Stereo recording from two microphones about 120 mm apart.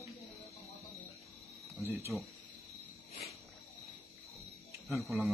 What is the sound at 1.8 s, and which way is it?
Speech, 20° right (ahead or behind).